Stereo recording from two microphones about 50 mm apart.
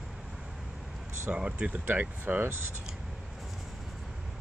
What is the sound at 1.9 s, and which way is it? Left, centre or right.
Speech, right.